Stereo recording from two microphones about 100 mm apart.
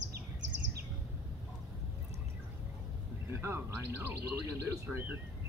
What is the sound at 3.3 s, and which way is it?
Speech, 25° right (ahead or behind).